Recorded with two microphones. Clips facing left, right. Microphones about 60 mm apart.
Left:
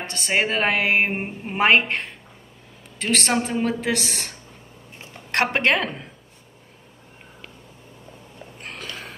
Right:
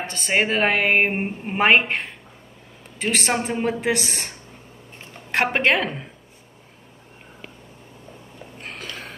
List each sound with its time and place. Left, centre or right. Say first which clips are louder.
0.0 s a woman's voice: right 1 dB; centre
5.3 s a woman's voice: right 1 dB; centre
8.5 s a sound: even; centre